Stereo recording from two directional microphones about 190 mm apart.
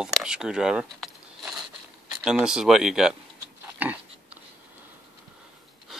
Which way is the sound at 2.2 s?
5° right (ahead or behind).